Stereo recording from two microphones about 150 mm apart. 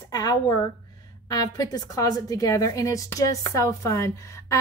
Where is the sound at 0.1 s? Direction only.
25° left (ahead or behind).